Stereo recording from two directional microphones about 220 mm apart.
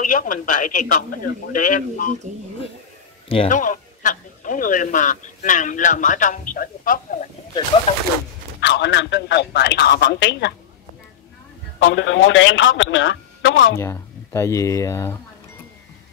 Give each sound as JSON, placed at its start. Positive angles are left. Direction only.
{"t": 0.0, "sound": "speech", "side_deg": 35}
{"t": 2.3, "sound": "speech", "side_deg": -35}
{"t": 3.3, "sound": "speech", "side_deg": 30}
{"t": 8.5, "sound": "a man's voice", "side_deg": 50}
{"t": 11.8, "sound": "speech", "side_deg": 60}
{"t": 13.7, "sound": "speech", "side_deg": 10}